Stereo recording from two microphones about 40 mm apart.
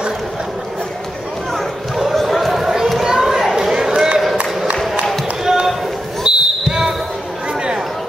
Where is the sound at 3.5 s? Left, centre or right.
Centre.